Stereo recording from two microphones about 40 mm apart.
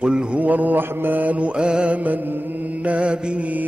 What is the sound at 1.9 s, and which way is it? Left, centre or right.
Mantra, right.